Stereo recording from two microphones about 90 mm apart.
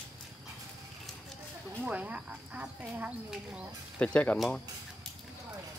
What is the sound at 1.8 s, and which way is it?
Speech, 15° right (ahead or behind).